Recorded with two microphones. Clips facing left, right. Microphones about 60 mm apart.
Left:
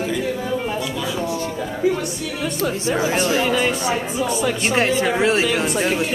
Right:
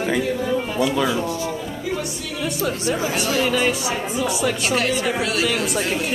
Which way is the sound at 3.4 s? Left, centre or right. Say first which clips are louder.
Left 1 dB; centre.